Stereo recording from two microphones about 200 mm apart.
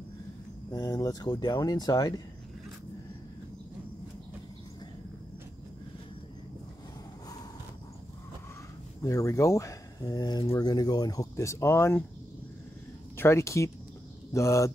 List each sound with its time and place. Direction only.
0.7 s speech: 15° left (ahead or behind)
9.0 s speech: 15° left (ahead or behind)
13.1 s speech: 10° left (ahead or behind)